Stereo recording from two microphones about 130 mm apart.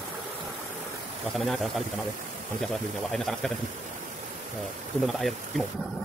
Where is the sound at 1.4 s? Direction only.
Centre (ahead or behind).